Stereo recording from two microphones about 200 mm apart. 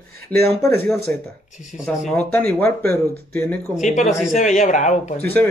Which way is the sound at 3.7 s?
40° left (ahead or behind).